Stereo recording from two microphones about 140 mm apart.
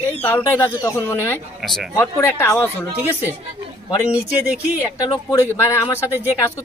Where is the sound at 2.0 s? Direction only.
15° left (ahead or behind).